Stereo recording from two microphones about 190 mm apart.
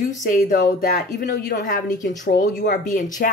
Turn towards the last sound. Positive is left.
turn(degrees=45)  # may be behind; listen again after turning